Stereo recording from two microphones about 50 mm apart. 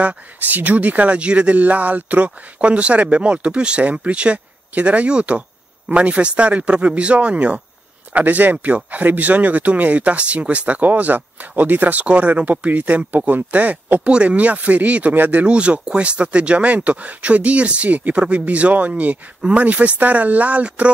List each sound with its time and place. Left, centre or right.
0.0 s speech: right
15.4 s speech: right